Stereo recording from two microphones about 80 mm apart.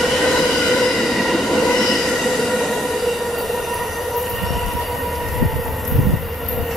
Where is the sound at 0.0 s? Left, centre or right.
Centre.